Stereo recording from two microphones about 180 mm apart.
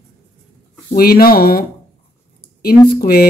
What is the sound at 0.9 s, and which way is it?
Speech, 55° left (ahead or behind).